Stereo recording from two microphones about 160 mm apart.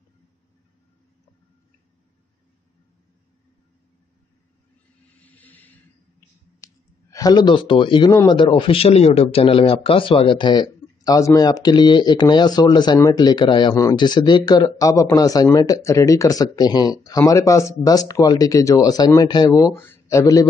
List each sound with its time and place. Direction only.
5.2 s vehicle: 10° left (ahead or behind)
6.6 s speech: 20° left (ahead or behind)